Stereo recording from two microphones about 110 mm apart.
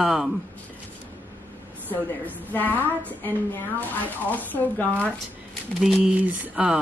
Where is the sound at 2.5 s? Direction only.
15° left (ahead or behind).